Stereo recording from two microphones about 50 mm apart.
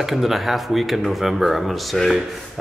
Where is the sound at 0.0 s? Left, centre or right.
Centre.